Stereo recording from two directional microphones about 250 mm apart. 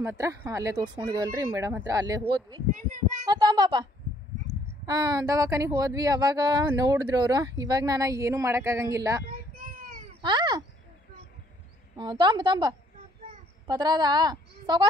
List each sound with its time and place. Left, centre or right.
0.0 s speech: centre
9.6 s a sound: right
10.2 s speech: centre
12.0 s speech: centre